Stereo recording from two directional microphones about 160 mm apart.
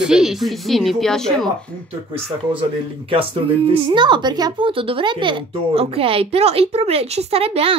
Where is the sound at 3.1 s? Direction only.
35° right (ahead or behind).